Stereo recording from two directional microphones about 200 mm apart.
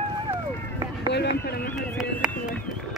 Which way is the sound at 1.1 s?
55° left (ahead or behind).